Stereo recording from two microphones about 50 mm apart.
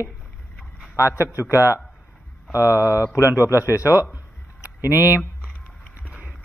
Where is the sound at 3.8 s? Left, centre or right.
Right.